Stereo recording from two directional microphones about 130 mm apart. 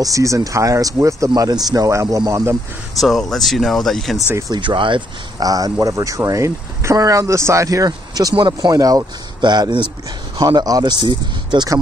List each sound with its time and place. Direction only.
0.0 s speech: 25° right (ahead or behind)
3.0 s speech: centre (ahead or behind)
4.6 s speech: 40° right (ahead or behind)